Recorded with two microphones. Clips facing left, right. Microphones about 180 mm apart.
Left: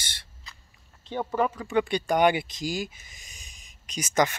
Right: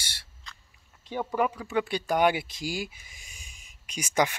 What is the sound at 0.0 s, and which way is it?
Owl, 10° right (ahead or behind).